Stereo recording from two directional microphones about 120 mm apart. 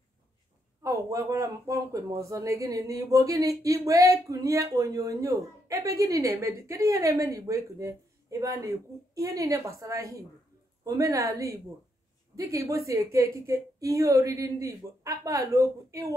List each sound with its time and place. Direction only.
0.8 s speech: 25° right (ahead or behind)